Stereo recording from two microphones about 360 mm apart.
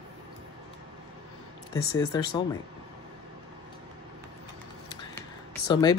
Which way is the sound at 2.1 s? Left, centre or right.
Centre.